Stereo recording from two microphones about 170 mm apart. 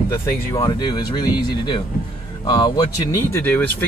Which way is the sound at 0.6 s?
25° left (ahead or behind).